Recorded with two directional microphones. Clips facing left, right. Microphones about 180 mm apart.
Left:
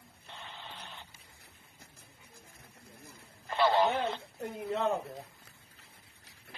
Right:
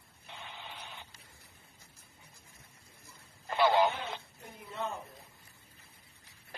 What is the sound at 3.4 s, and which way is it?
Radio, 5° right (ahead or behind).